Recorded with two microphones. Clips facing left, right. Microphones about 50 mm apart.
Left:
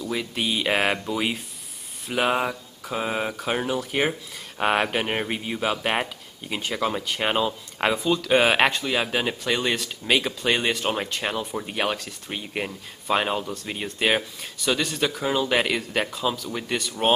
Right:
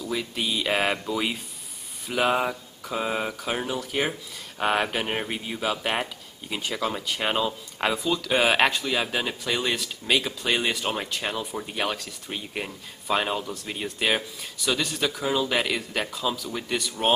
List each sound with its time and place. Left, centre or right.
0.0 s speech: centre
0.5 s a sound: left
0.9 s speech: centre